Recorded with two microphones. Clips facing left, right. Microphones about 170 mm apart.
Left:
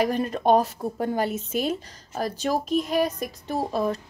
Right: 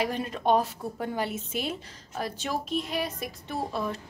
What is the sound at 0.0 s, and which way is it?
A woman's voice, 45° left (ahead or behind).